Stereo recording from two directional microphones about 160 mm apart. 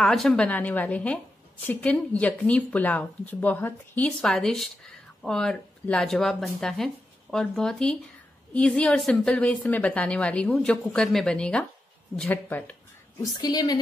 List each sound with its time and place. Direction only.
0.0 s a woman's voice: centre (ahead or behind)
13.2 s a woman's voice: 25° left (ahead or behind)